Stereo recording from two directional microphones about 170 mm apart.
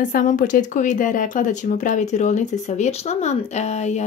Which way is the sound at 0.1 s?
50° left (ahead or behind).